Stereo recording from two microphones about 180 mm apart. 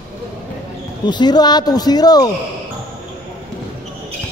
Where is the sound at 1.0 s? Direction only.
25° left (ahead or behind).